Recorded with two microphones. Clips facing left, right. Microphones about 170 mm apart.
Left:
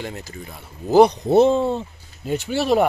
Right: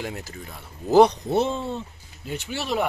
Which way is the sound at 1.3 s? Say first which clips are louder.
Left 9 dB; 40° left (ahead or behind).